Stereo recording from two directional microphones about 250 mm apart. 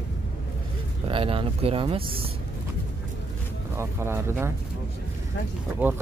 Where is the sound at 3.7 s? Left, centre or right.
Centre.